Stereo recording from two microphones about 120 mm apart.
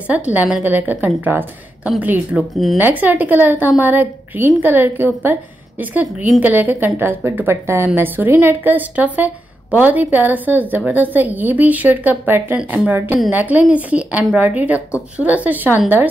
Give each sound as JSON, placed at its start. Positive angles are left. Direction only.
{"t": 0.1, "sound": "a woman's voice", "side_deg": -10}
{"t": 2.5, "sound": "speech", "side_deg": 0}
{"t": 2.8, "sound": "a woman's voice", "side_deg": -15}
{"t": 6.4, "sound": "a woman's voice", "side_deg": -15}